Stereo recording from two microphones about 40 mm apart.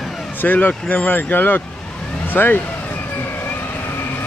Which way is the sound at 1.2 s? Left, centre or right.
Left.